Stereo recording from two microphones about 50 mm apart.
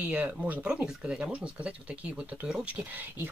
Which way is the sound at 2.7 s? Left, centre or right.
Right.